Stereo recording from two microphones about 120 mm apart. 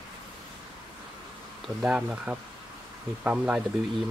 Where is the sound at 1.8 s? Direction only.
5° right (ahead or behind).